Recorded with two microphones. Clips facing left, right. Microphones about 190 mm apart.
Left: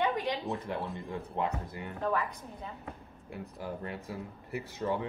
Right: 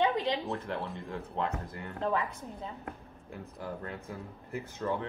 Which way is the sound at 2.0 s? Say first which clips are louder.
Right 1 dB; 20° right (ahead or behind).